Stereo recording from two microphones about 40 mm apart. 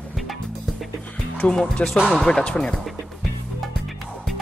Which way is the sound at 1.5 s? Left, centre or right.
Centre.